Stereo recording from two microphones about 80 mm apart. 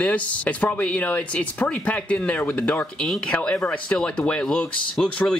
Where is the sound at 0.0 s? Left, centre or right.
Centre.